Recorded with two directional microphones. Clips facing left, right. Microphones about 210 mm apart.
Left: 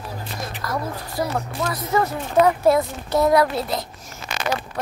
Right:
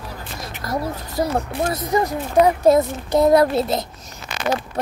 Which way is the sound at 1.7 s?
15° right (ahead or behind).